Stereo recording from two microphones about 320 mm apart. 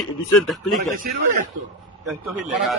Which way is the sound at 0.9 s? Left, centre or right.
Right.